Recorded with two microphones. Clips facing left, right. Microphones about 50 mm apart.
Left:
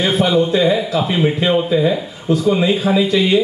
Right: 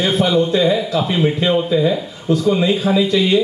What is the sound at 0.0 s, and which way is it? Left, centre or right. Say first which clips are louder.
Speech: left 1 dB; centre.